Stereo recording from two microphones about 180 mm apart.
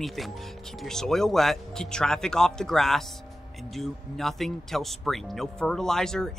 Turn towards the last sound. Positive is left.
turn(degrees=5)  # may be behind; listen again after turning